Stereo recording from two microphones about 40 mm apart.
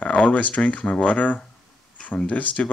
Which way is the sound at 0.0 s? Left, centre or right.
Left.